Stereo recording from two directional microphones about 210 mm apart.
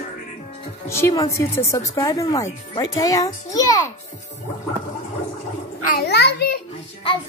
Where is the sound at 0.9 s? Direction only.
15° left (ahead or behind).